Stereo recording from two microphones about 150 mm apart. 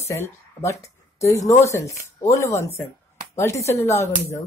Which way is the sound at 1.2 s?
20° left (ahead or behind).